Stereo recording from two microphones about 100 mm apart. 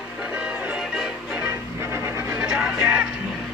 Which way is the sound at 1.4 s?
20° right (ahead or behind).